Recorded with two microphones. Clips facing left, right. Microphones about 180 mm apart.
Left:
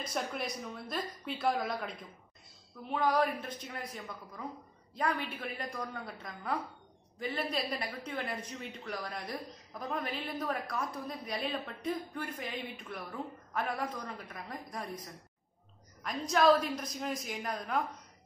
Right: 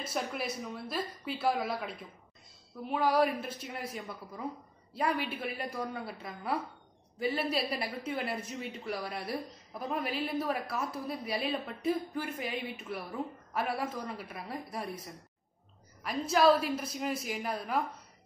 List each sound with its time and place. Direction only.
0.0 s a woman's voice: 5° right (ahead or behind)